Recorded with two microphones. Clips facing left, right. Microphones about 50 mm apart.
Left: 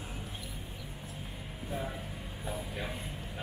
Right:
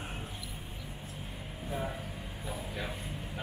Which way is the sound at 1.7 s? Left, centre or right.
Centre.